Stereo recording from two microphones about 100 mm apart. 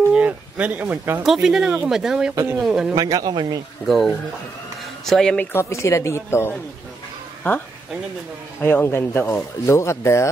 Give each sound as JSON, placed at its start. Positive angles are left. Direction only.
{"t": 0.1, "sound": "speech", "side_deg": -15}
{"t": 1.2, "sound": "speech", "side_deg": -5}
{"t": 3.0, "sound": "speech", "side_deg": -40}
{"t": 3.8, "sound": "speech", "side_deg": 0}
{"t": 5.5, "sound": "speech", "side_deg": 25}
{"t": 8.5, "sound": "speech", "side_deg": 20}